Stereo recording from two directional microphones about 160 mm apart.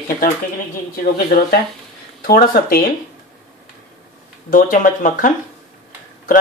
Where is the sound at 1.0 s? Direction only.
65° left (ahead or behind).